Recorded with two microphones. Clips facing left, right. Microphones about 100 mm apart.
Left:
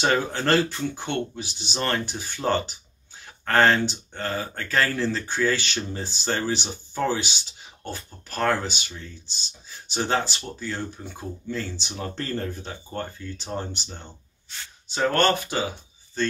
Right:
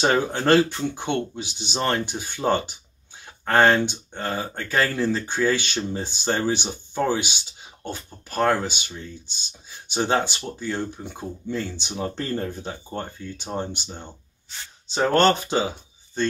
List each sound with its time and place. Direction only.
0.0 s speech: 15° right (ahead or behind)
15.1 s speech: 25° right (ahead or behind)